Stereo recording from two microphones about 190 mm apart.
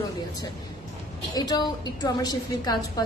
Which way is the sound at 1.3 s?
20° left (ahead or behind).